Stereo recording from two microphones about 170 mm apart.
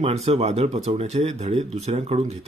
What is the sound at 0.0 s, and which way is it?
Speech, 40° right (ahead or behind).